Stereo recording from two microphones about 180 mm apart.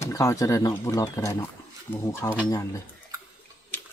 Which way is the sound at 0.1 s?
15° left (ahead or behind).